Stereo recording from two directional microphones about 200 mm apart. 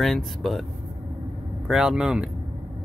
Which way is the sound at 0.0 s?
Centre (ahead or behind).